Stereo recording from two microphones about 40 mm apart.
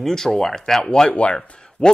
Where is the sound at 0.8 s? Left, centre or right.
Left.